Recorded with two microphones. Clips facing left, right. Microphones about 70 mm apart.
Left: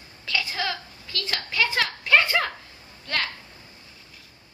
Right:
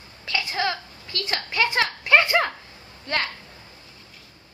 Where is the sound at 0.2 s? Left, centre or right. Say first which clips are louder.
Right 3 dB; right.